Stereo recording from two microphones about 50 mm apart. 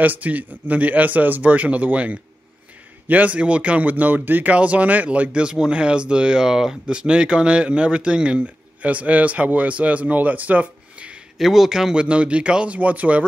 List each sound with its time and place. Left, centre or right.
0.0 s a man's voice: right
4.6 s speech: right
11.3 s a man's voice: centre
12.0 s speech: right